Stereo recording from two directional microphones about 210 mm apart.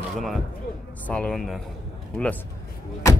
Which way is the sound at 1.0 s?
5° left (ahead or behind).